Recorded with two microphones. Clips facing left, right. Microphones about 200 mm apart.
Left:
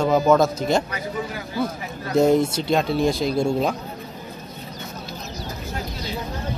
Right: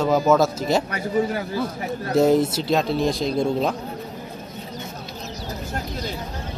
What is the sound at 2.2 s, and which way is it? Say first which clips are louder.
A man's voice: even; 5° right (ahead or behind).